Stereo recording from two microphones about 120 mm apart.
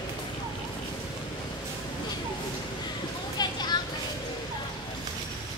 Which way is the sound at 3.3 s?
35° left (ahead or behind).